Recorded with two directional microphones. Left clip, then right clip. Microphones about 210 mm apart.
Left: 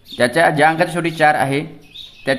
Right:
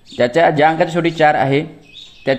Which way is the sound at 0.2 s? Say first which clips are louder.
Right 1 dB; 15° right (ahead or behind).